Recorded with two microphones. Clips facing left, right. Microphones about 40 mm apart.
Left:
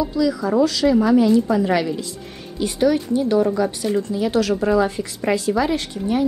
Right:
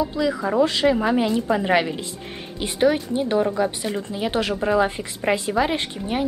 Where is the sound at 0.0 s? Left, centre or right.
Right.